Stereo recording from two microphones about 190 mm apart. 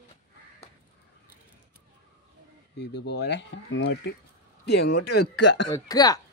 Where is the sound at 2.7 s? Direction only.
65° left (ahead or behind).